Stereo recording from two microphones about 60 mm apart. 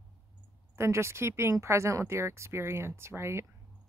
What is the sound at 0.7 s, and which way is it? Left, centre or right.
Speech, right.